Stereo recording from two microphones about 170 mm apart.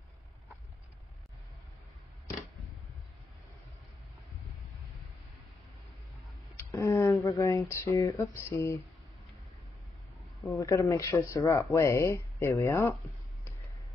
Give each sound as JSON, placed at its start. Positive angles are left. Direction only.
{"t": 6.5, "sound": "speech", "side_deg": 15}
{"t": 10.4, "sound": "speech", "side_deg": 15}